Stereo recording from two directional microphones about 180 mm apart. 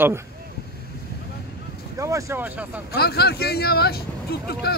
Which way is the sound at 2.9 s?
65° left (ahead or behind).